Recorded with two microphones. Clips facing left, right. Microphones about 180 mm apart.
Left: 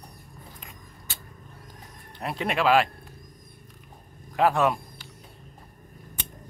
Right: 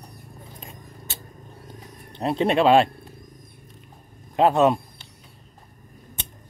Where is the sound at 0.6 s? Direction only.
25° right (ahead or behind).